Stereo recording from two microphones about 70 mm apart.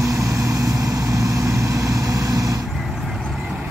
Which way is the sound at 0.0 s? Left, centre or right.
Right.